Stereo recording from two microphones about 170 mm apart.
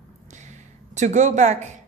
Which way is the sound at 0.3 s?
45° right (ahead or behind).